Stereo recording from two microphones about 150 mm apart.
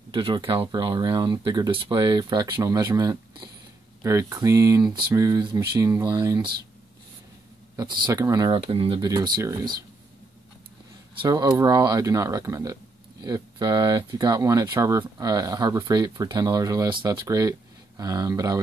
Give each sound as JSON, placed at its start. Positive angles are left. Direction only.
{"t": 0.1, "sound": "speech", "side_deg": -30}
{"t": 7.7, "sound": "speech", "side_deg": -30}
{"t": 8.6, "sound": "speech", "side_deg": -40}
{"t": 9.0, "sound": "speech", "side_deg": -25}
{"t": 11.2, "sound": "speech", "side_deg": -25}